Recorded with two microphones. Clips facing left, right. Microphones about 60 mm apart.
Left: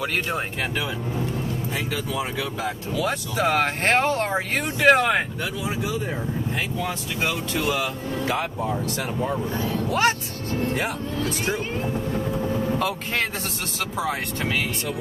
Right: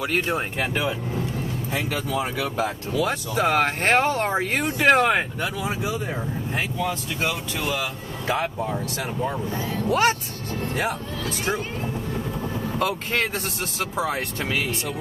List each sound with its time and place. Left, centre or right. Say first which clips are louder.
2.9 s speech: right 1 dB; centre
5.4 s speech: right 1 dB; right
7.2 s speech: left 1 dB; centre
9.8 s speech: right 2 dB; centre
12.5 s speech: left 1 dB; centre